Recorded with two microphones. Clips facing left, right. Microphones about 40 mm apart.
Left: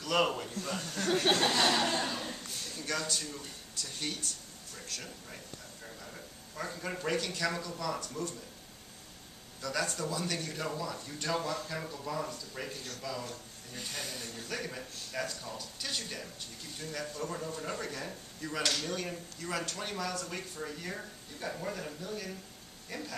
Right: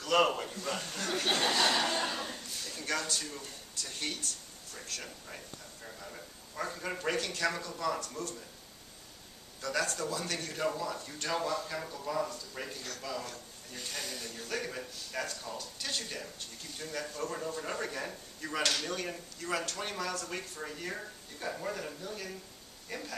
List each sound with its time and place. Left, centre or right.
0.0 s a man's voice: centre
0.7 s speech: right
1.5 s a man's voice: centre
9.6 s speech: centre